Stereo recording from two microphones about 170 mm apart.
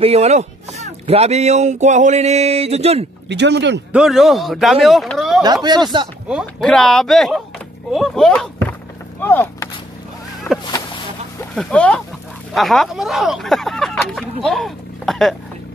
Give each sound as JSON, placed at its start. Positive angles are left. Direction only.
{"t": 0.0, "sound": "speech", "side_deg": -40}
{"t": 3.3, "sound": "speech", "side_deg": -90}
{"t": 3.9, "sound": "speech", "side_deg": 0}
{"t": 5.4, "sound": "speech", "side_deg": -25}
{"t": 6.2, "sound": "speech", "side_deg": 0}
{"t": 9.2, "sound": "a sound", "side_deg": 10}
{"t": 10.5, "sound": "speech", "side_deg": 0}